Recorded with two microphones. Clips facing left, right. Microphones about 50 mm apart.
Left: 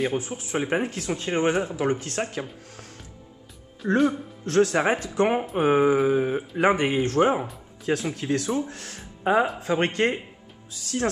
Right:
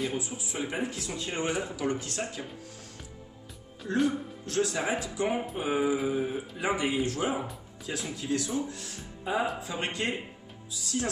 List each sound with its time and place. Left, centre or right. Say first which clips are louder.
0.1 s speech: left 7 dB; left
3.8 s speech: left 8 dB; centre
4.5 s speech: left 8 dB; left